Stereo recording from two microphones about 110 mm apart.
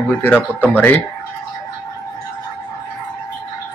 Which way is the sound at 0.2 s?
15° left (ahead or behind).